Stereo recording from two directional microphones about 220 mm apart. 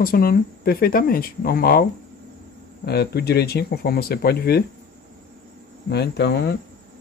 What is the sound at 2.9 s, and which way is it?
Speech, 45° left (ahead or behind).